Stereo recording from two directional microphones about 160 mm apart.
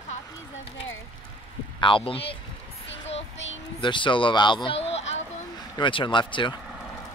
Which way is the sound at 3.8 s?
30° left (ahead or behind).